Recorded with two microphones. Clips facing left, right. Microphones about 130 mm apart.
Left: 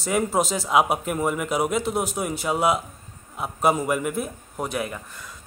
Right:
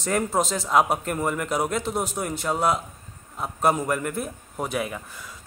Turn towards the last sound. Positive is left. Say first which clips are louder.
# even
turn(degrees=0)  # may be behind; listen again after turning